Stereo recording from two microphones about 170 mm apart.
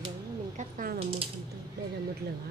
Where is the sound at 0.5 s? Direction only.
55° right (ahead or behind).